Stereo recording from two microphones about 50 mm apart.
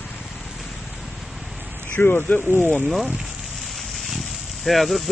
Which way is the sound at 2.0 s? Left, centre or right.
Left.